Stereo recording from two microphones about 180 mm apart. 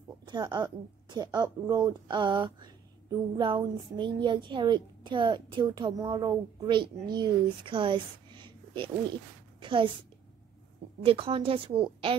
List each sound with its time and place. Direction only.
0.2 s a woman's voice: 25° right (ahead or behind)
11.1 s a woman's voice: 30° right (ahead or behind)